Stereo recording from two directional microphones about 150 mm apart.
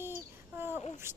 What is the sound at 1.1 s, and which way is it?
Speech, 15° right (ahead or behind).